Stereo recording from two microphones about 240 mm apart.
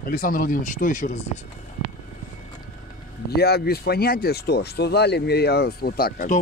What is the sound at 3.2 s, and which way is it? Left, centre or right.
Speech, left.